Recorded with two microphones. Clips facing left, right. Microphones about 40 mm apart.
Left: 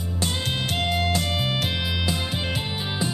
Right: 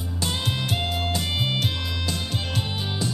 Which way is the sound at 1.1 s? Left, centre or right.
Centre.